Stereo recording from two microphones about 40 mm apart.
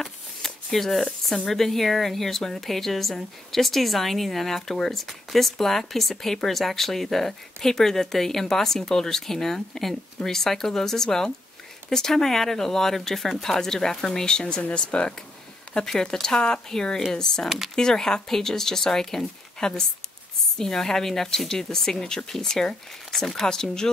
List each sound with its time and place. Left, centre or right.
0.0 s shuffling cards: centre
1.4 s speech: centre; by 15.1 s left
15.7 s speech: centre